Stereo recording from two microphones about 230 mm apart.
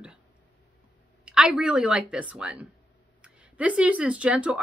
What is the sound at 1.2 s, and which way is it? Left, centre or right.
Speech, centre.